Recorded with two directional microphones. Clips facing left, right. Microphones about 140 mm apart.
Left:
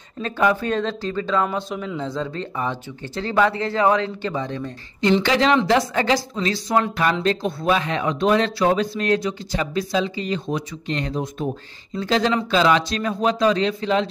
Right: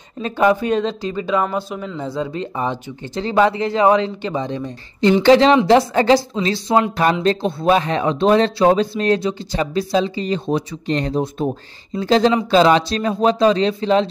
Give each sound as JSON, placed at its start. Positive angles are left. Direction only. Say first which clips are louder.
{"t": 0.2, "sound": "speech", "louder": "right 4 dB", "side_deg": -20}
{"t": 5.2, "sound": "speech", "louder": "right 7 dB", "side_deg": -30}